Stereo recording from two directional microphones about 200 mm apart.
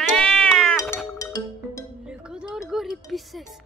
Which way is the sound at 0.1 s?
Centre (ahead or behind).